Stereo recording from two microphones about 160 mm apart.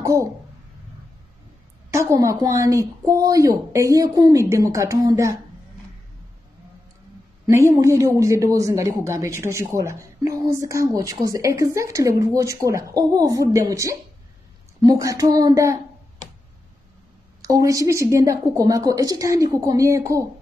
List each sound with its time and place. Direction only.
0.0 s speech: 20° right (ahead or behind)
1.9 s speech: 20° right (ahead or behind)
7.4 s speech: 20° right (ahead or behind)
17.4 s speech: 20° right (ahead or behind)